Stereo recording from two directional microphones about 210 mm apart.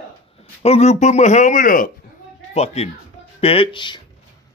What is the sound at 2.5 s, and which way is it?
Speech, 30° left (ahead or behind).